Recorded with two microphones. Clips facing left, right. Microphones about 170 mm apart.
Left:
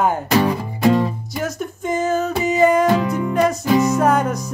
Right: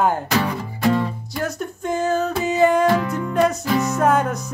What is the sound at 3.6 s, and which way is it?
Music, 20° left (ahead or behind).